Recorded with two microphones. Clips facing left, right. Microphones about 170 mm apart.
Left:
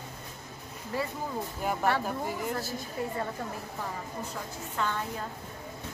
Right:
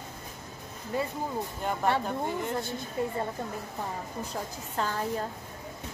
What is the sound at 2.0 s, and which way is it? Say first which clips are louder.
Speech: right 1 dB; 5° left (ahead or behind).